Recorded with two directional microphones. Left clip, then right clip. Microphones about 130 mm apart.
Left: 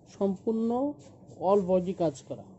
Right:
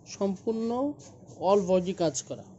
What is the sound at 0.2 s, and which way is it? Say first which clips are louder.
Speech: left 1 dB; 30° left (ahead or behind).